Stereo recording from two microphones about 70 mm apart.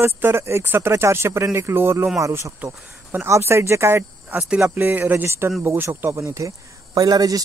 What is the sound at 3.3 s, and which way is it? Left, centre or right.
Speech, right.